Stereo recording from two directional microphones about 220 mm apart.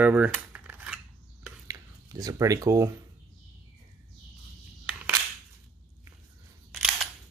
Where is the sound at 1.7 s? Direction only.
15° right (ahead or behind).